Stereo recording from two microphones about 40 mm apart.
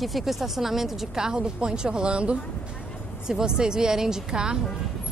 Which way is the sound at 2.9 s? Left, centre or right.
Left.